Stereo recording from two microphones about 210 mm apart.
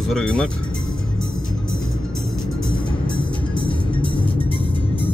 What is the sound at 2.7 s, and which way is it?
Music, 20° left (ahead or behind).